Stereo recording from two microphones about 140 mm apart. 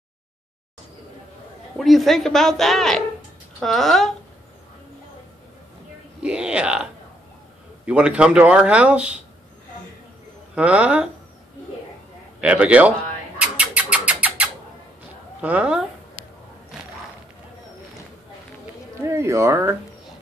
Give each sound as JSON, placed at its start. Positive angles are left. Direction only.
{"t": 1.8, "sound": "speech", "side_deg": 0}
{"t": 6.2, "sound": "speech", "side_deg": -5}
{"t": 10.5, "sound": "speech", "side_deg": -10}
{"t": 12.4, "sound": "speech", "side_deg": -10}
{"t": 13.4, "sound": "music", "side_deg": -10}
{"t": 15.4, "sound": "speech", "side_deg": -10}
{"t": 19.0, "sound": "speech", "side_deg": -20}